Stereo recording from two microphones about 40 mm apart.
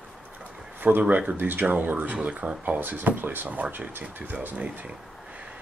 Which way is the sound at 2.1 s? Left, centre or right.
Right.